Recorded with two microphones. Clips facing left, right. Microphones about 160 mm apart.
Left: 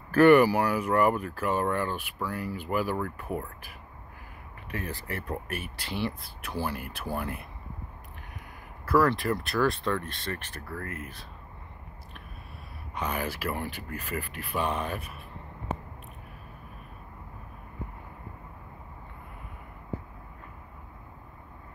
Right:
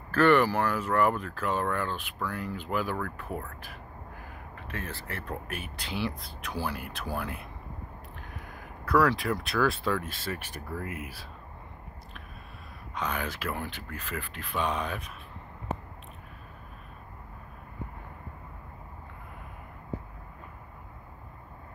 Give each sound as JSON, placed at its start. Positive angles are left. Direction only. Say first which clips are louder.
{"t": 0.1, "sound": "speech", "louder": "left 4 dB", "side_deg": 10}
{"t": 4.6, "sound": "speech", "louder": "left 3 dB", "side_deg": 15}
{"t": 8.8, "sound": "speech", "louder": "left 1 dB", "side_deg": 0}
{"t": 12.9, "sound": "speech", "louder": "left 1 dB", "side_deg": 10}